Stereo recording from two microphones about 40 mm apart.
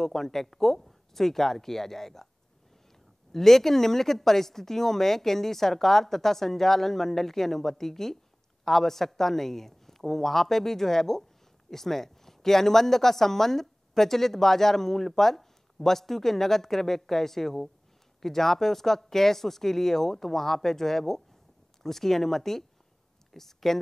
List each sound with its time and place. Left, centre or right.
0.0 s speech: centre
3.3 s speech: centre